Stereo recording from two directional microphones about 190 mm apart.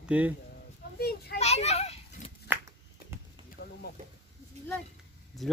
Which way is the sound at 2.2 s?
40° left (ahead or behind).